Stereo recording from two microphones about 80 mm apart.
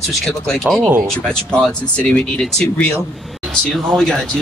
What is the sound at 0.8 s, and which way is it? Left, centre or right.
Speech, right.